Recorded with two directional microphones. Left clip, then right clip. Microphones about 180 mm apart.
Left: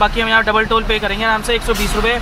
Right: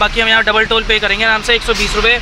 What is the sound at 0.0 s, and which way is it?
Speech, centre (ahead or behind).